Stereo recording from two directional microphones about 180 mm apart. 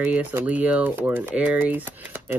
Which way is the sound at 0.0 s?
10° right (ahead or behind).